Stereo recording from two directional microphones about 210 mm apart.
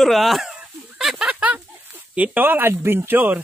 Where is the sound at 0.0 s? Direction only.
Centre (ahead or behind).